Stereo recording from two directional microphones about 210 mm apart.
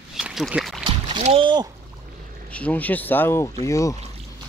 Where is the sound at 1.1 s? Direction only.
25° right (ahead or behind).